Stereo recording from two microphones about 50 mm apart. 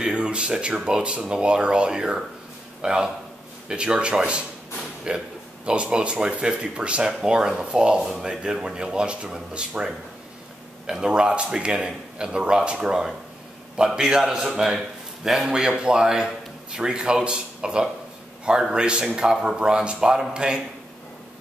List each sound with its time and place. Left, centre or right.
0.0 s a sound: centre
0.8 s a man's voice: centre
10.9 s a man's voice: centre